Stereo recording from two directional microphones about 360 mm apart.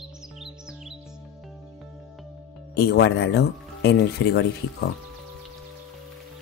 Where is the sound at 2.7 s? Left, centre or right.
Left.